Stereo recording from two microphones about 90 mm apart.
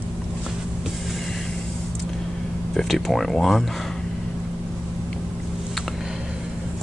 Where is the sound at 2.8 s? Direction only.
Centre (ahead or behind).